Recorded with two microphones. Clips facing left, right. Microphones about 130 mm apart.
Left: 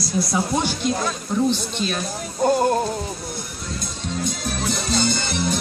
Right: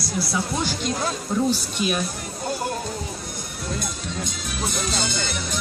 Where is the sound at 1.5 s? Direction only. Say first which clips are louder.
Even; 10° right (ahead or behind).